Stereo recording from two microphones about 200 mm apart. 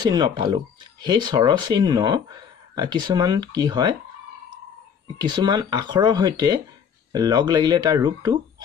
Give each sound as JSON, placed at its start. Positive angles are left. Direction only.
{"t": 0.0, "sound": "speech", "side_deg": -20}
{"t": 5.2, "sound": "speech", "side_deg": -20}